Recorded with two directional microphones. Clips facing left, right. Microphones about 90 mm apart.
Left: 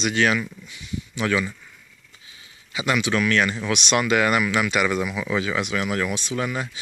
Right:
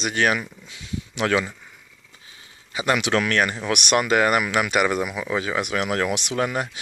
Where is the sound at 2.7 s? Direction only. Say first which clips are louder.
Right 2 dB; 45° right (ahead or behind).